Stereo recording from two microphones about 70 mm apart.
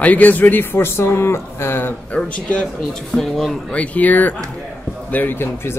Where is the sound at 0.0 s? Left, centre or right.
Left.